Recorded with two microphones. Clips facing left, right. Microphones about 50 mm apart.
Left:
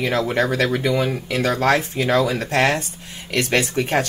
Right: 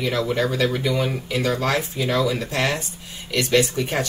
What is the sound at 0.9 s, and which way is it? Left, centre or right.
Speech, left.